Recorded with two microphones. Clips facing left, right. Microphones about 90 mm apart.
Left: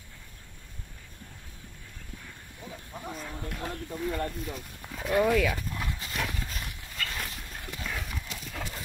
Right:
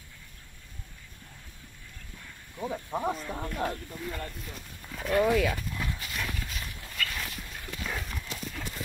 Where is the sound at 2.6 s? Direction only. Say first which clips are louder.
Right 11 dB; 90° right.